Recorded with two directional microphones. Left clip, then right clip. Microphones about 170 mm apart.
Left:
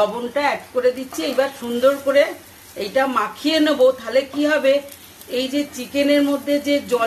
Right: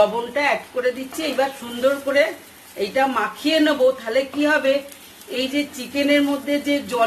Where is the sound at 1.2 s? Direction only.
30° left (ahead or behind).